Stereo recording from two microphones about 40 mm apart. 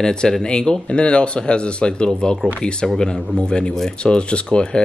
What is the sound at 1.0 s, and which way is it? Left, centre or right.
Speech, left.